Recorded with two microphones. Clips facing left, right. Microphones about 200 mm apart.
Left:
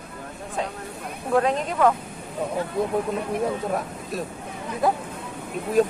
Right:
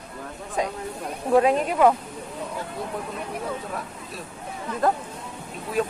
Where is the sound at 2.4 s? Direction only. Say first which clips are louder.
Left 7 dB; 55° left (ahead or behind).